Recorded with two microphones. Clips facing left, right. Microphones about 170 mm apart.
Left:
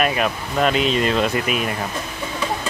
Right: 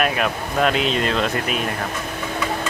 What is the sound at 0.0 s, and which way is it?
Speech, centre (ahead or behind).